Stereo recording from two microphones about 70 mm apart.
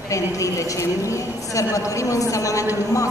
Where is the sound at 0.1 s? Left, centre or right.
Left.